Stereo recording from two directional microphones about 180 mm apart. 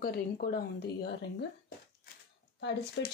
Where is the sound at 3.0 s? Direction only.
80° left.